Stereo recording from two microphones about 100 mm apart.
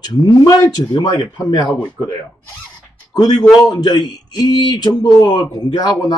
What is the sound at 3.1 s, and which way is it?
Speech, 45° left (ahead or behind).